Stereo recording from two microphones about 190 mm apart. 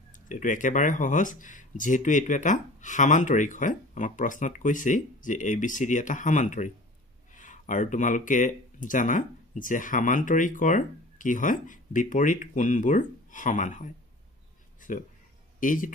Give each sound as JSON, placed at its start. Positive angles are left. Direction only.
{"t": 0.1, "sound": "speech", "side_deg": 45}
{"t": 14.8, "sound": "a sound", "side_deg": 45}
{"t": 15.6, "sound": "speech", "side_deg": 45}